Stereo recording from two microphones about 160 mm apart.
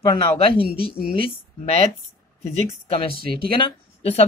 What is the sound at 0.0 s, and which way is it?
Speech, 30° left (ahead or behind).